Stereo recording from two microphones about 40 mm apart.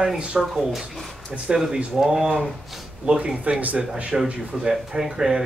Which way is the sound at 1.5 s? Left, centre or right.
Centre.